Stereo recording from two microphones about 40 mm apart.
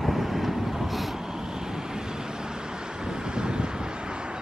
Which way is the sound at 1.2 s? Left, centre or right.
Centre.